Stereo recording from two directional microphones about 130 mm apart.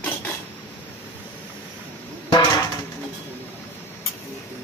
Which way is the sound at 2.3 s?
30° left (ahead or behind).